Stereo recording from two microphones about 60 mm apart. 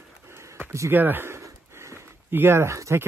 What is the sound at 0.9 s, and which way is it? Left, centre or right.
Speech, right.